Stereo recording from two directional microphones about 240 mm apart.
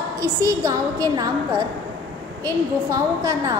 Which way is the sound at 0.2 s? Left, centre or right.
Centre.